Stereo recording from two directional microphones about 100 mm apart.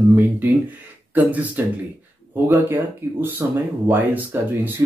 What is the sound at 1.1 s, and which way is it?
A man's voice, 15° right (ahead or behind).